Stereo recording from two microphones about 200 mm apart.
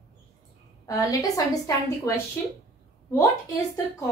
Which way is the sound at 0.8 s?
15° left (ahead or behind).